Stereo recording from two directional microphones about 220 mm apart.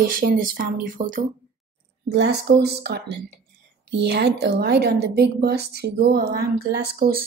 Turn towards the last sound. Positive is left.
turn(degrees=-40)  # may be behind; listen again after turning